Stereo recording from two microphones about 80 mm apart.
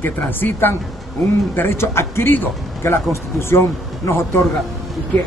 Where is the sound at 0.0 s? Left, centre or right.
Left.